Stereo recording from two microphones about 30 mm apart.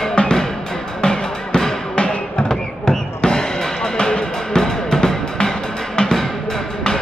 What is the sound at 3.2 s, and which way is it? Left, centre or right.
Music, left.